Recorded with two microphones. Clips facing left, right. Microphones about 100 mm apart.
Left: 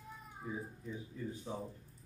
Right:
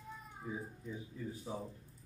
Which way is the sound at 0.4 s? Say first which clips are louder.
Left 1 dB; centre (ahead or behind).